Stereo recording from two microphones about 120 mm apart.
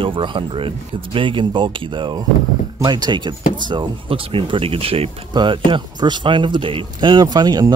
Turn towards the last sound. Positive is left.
turn(degrees=-35)  # may be behind; listen again after turning